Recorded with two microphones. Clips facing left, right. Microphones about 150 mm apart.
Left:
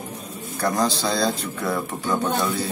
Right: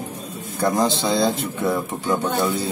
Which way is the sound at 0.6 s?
20° right (ahead or behind).